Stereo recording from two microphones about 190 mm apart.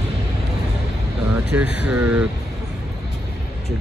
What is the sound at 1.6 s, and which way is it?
Speech, 60° left (ahead or behind).